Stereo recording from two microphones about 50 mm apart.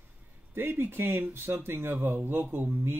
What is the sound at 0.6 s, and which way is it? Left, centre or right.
Speech, right.